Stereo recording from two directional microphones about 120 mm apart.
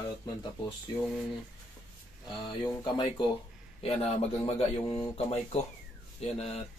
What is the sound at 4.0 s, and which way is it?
Speech, 55° left (ahead or behind).